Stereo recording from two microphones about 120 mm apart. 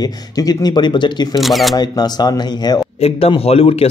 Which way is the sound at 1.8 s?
35° left (ahead or behind).